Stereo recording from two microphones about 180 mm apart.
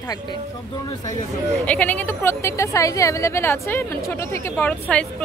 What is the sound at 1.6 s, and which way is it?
A woman's voice, 10° left (ahead or behind).